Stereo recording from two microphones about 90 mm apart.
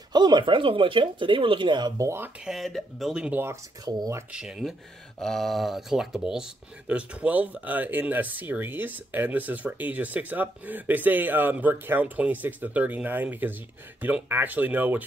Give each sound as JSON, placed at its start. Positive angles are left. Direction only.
{"t": 0.1, "sound": "speech", "side_deg": -55}
{"t": 2.0, "sound": "speech", "side_deg": -30}
{"t": 2.4, "sound": "speech", "side_deg": 0}
{"t": 3.8, "sound": "speech", "side_deg": -50}
{"t": 4.3, "sound": "speech", "side_deg": -10}